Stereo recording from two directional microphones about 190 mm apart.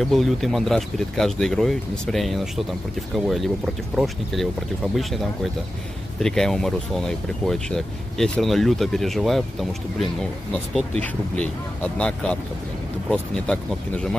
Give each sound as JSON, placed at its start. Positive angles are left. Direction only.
{"t": 0.0, "sound": "speech", "side_deg": 0}